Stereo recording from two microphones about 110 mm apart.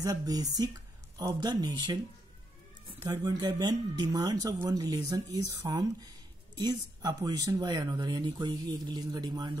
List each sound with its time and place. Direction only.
0.0 s speech: 35° right (ahead or behind)
3.0 s speech: 40° right (ahead or behind)